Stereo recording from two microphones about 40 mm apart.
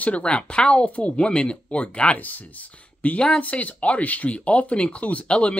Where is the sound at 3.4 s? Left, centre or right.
Left.